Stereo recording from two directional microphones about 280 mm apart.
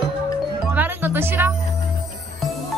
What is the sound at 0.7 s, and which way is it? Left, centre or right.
Music, centre.